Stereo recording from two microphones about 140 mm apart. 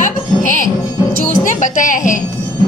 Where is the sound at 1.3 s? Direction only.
65° left (ahead or behind).